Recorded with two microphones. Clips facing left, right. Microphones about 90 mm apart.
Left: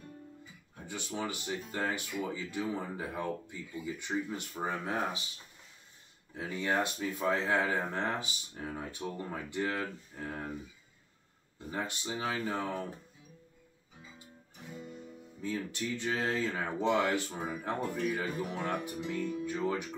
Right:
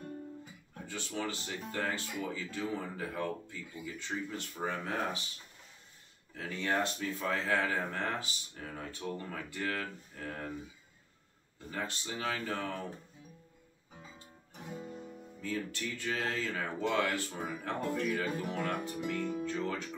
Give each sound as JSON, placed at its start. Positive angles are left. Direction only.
{"t": 0.8, "sound": "speech", "side_deg": 15}
{"t": 6.3, "sound": "speech", "side_deg": 15}
{"t": 11.5, "sound": "speech", "side_deg": 20}
{"t": 14.8, "sound": "guitar", "side_deg": -35}
{"t": 15.4, "sound": "speech", "side_deg": 20}